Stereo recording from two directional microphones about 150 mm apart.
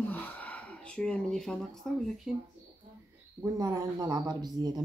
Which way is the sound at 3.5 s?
25° right (ahead or behind).